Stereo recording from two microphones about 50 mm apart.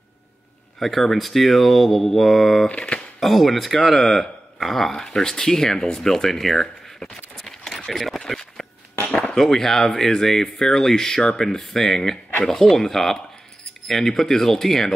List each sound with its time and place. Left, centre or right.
0.7 s speech: centre
2.7 s speech: left
3.2 s speech: centre
8.2 s a sound: centre
9.3 s speech: centre